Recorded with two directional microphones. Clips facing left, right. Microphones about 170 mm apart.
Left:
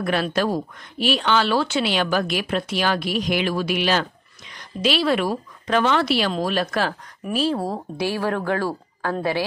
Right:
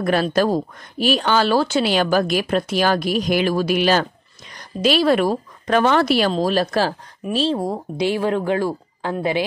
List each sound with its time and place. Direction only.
0.0 s a woman's voice: 40° right (ahead or behind)
6.3 s a woman's voice: 35° right (ahead or behind); by 9.4 s 20° right (ahead or behind)